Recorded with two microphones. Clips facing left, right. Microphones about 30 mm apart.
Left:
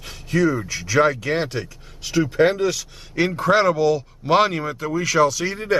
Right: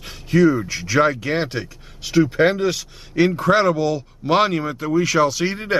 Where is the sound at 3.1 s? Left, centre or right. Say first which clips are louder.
Right 2 dB; centre.